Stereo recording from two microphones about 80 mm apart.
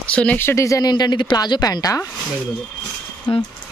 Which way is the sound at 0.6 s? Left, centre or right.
Left.